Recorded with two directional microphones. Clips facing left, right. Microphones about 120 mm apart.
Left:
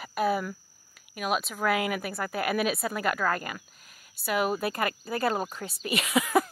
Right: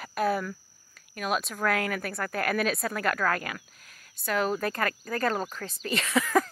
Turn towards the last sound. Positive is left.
turn(degrees=15)  # may be behind; listen again after turning